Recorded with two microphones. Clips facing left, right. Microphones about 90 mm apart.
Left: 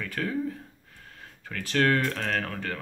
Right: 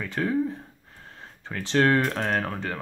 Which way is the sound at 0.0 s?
20° right (ahead or behind).